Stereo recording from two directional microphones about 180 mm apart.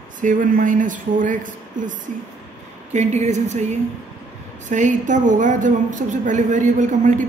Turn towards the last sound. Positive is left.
turn(degrees=-45)  # may be behind; listen again after turning